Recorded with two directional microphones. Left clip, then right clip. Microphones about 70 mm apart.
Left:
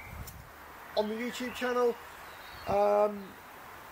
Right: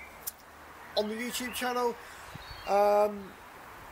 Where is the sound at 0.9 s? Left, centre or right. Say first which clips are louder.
Even; right.